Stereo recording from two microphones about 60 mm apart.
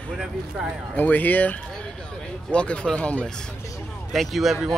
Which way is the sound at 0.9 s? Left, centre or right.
Left.